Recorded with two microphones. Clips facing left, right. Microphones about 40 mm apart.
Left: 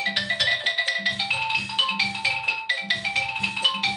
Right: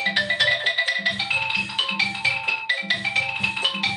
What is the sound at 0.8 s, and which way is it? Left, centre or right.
Marimba, centre.